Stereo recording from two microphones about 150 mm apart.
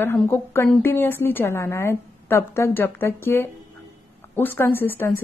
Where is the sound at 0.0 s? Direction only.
15° left (ahead or behind).